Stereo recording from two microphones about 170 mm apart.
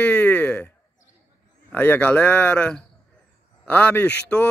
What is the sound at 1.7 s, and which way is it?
A man's voice, 10° left (ahead or behind).